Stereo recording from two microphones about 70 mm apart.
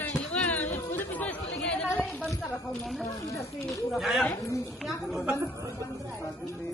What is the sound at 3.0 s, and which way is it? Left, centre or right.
Speech, left.